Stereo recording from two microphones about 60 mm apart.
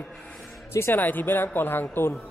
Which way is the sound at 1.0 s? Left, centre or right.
Left.